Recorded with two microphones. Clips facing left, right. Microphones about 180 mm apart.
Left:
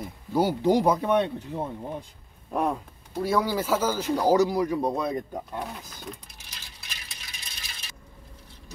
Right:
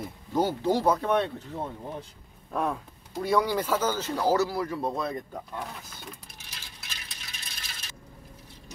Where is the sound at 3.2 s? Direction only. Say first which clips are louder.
Even; 5° left (ahead or behind).